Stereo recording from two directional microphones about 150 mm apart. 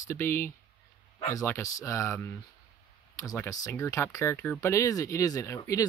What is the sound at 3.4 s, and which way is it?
Speech, 20° left (ahead or behind).